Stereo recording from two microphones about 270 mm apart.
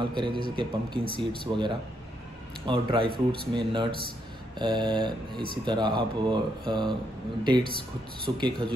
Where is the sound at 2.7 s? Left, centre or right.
Centre.